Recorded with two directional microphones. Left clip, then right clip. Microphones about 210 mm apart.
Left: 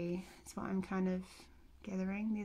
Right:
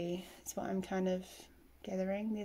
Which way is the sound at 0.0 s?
20° left (ahead or behind).